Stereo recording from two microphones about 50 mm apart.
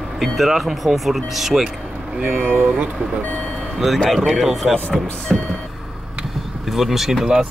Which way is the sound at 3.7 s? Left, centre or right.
Centre.